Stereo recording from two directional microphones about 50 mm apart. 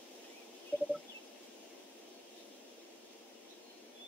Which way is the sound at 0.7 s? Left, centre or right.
Left.